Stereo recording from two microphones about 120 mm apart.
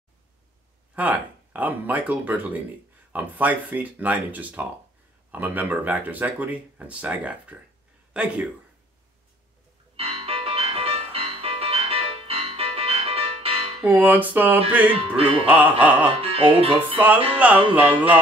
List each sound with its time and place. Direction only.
0.9 s speech: 15° right (ahead or behind)
9.9 s music: 55° right (ahead or behind)
13.8 s speech: 15° right (ahead or behind)
16.2 s speech: 50° right (ahead or behind)
17.4 s speech: 15° right (ahead or behind)